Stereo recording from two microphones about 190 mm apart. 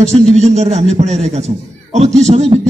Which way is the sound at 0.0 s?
35° right (ahead or behind).